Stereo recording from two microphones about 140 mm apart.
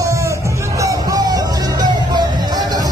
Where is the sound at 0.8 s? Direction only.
30° right (ahead or behind).